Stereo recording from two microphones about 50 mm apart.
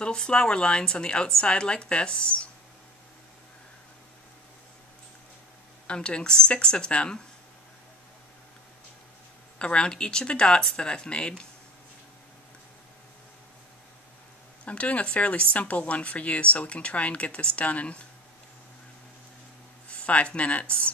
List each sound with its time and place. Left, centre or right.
0.0 s speech: centre
5.9 s speech: centre
9.6 s speech: left
14.6 s speech: left
19.9 s speech: left